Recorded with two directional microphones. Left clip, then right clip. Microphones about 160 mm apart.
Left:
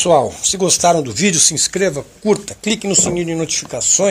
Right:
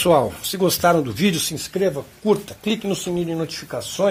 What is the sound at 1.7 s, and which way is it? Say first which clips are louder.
Speech: left 4 dB; 40° left (ahead or behind).